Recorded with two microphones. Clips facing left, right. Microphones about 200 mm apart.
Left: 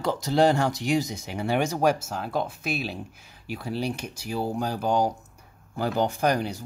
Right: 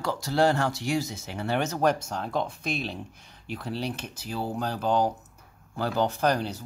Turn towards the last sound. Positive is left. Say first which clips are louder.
# left 1 dB
turn(degrees=10)  # may be behind; listen again after turning